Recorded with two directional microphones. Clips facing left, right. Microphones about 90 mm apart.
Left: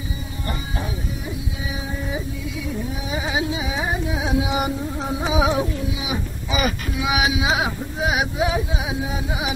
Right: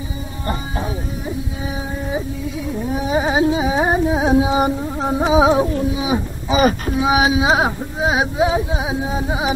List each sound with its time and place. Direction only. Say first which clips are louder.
2.9 s carnatic music: right 11 dB; 40° right (ahead or behind)
5.8 s speech: right 7 dB; 35° right (ahead or behind)